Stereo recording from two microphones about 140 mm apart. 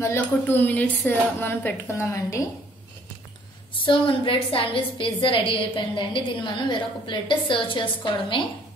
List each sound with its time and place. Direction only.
0.0 s a woman's voice: 15° left (ahead or behind)
3.8 s a woman's voice: 35° left (ahead or behind)